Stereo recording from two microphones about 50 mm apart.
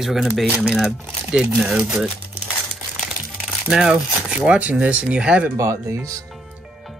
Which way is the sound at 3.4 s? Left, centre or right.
Centre.